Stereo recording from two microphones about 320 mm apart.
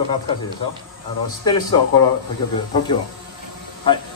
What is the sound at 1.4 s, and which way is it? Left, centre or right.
Speech, centre.